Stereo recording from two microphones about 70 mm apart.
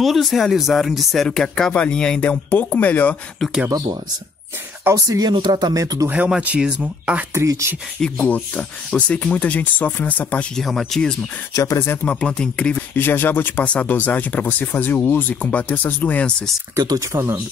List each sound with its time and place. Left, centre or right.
0.0 s speech: centre
2.5 s speech: left
4.9 s speech: right
6.0 s speech: right
7.3 s speech: right
8.0 s speech: centre
10.5 s speech: centre
11.5 s speech: left
11.8 s speech: left
12.1 s speech: centre
12.9 s speech: left
16.3 s speech: centre
16.7 s speech: right
17.1 s speech: right